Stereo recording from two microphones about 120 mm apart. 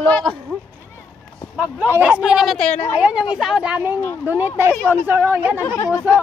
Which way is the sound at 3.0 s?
10° right (ahead or behind).